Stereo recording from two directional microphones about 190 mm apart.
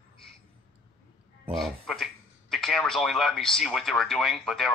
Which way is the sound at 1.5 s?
Centre (ahead or behind).